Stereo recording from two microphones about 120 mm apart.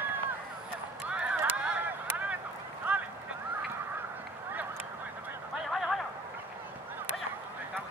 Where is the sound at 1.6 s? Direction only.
10° right (ahead or behind).